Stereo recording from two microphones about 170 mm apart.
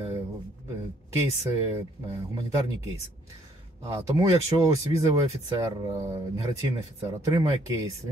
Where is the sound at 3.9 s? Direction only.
15° right (ahead or behind).